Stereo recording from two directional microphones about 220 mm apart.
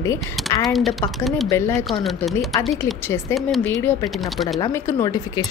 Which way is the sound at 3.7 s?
10° left (ahead or behind).